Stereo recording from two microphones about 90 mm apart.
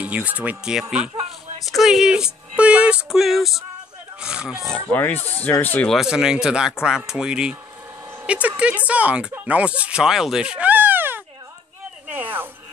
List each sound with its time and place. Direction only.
0.0 s speech: 15° right (ahead or behind)
4.9 s speech: 20° left (ahead or behind)
5.9 s speech: 5° right (ahead or behind); by 11.2 s 25° right (ahead or behind)
12.1 s a sound: 20° right (ahead or behind)